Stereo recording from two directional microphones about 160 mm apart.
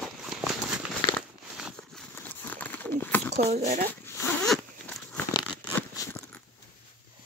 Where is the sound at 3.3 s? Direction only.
50° right (ahead or behind).